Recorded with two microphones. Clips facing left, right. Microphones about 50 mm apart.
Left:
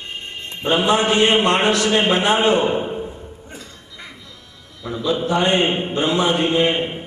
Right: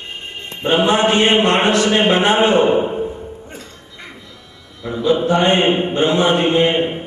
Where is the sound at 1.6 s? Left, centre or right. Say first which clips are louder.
Right 3 dB; right.